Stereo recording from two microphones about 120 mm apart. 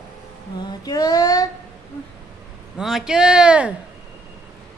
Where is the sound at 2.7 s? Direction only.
5° right (ahead or behind).